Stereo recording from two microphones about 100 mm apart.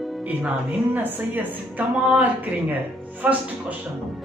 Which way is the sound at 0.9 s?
20° right (ahead or behind).